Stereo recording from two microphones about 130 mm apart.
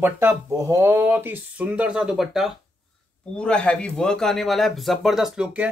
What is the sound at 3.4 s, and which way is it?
A man's voice, 10° left (ahead or behind).